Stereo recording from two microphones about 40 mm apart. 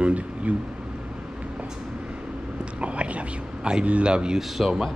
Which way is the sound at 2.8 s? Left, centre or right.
Right.